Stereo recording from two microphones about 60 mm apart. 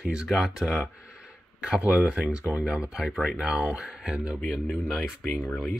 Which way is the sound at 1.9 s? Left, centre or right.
Centre.